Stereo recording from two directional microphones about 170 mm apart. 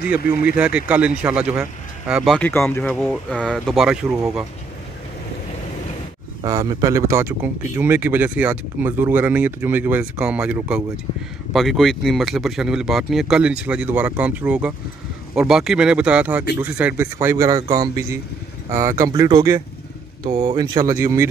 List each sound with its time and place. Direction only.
0.6 s speech: 5° right (ahead or behind)
2.3 s speech: 5° left (ahead or behind)
6.4 s speech: 20° right (ahead or behind)